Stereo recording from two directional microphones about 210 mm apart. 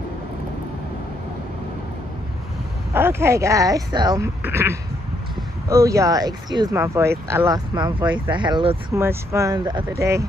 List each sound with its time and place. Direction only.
2.9 s speech: 10° right (ahead or behind)